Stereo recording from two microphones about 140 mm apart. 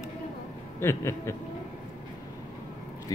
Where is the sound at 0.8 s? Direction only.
20° left (ahead or behind).